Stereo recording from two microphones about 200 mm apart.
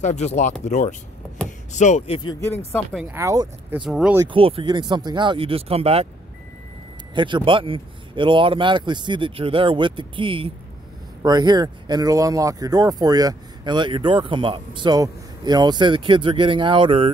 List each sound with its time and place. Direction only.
0.0 s speech: 35° left (ahead or behind)
2.9 s speech: 5° right (ahead or behind)
3.8 s speech: 5° right (ahead or behind)
4.2 s speech: 25° right (ahead or behind)
7.2 s speech: 25° right (ahead or behind)